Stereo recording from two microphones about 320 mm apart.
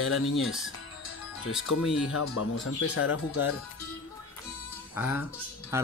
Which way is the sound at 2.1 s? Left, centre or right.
Left.